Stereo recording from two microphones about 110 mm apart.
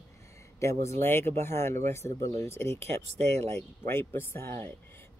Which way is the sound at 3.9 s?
20° left (ahead or behind).